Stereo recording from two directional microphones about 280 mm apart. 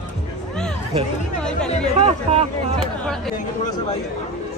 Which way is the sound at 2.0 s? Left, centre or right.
Right.